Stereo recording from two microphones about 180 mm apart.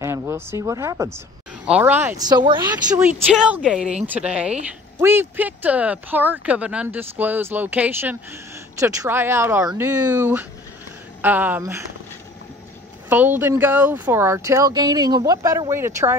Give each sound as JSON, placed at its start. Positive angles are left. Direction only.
{"t": 0.0, "sound": "a woman's voice", "side_deg": -15}
{"t": 2.2, "sound": "speech", "side_deg": -25}
{"t": 3.0, "sound": "a woman's voice", "side_deg": -10}
{"t": 13.1, "sound": "a woman's voice", "side_deg": -10}